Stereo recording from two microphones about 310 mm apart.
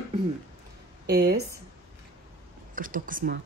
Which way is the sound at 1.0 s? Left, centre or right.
Right.